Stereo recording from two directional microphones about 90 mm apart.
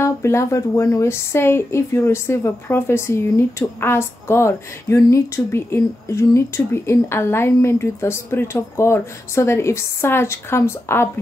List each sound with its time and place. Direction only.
0.0 s speech: 30° left (ahead or behind)